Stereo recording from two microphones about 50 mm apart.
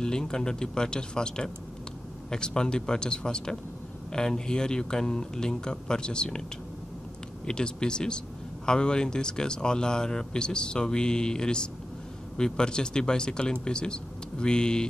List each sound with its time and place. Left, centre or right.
0.0 s speech: centre
7.4 s speech: centre